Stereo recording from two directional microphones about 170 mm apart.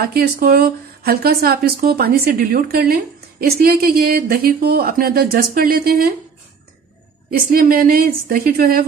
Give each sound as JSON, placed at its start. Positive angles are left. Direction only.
{"t": 0.0, "sound": "speech", "side_deg": -65}
{"t": 7.2, "sound": "speech", "side_deg": -60}